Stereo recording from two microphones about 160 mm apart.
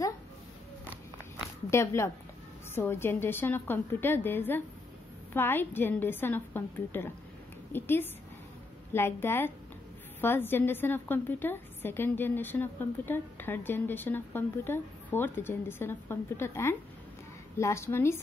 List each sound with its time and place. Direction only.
1.7 s a woman's voice: 15° left (ahead or behind)